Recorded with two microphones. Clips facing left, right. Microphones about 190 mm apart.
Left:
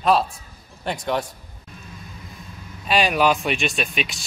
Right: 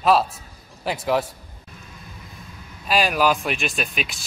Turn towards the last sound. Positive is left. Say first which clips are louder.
# left 2 dB
turn(degrees=-5)  # may be behind; listen again after turning